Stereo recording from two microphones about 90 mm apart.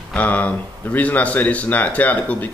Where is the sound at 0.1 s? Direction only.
15° left (ahead or behind).